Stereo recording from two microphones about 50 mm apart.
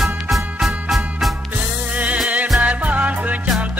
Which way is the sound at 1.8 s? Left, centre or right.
Right.